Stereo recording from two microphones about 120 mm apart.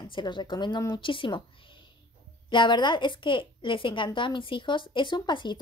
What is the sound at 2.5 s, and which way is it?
Speech, 40° left (ahead or behind).